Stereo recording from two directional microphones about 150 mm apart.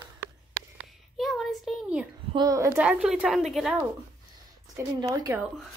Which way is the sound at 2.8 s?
5° right (ahead or behind).